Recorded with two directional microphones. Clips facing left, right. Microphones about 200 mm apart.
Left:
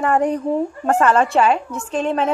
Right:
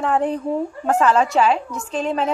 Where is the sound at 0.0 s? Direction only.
10° left (ahead or behind).